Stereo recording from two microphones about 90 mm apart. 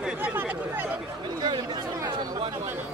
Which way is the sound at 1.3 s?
55° right (ahead or behind).